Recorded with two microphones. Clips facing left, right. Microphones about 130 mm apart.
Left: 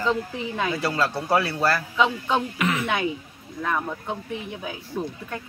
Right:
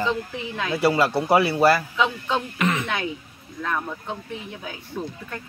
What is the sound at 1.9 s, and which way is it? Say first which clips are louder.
Speech: left 1 dB; 5° left (ahead or behind).